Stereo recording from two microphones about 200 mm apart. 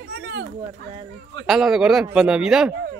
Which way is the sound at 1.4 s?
Centre (ahead or behind).